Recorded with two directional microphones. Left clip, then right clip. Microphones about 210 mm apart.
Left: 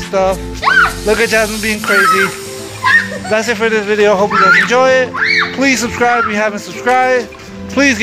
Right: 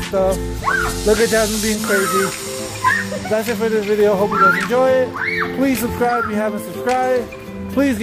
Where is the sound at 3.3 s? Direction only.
5° left (ahead or behind).